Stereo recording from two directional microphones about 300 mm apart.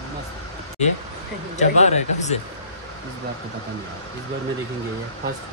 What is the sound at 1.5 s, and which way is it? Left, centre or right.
Speech, left.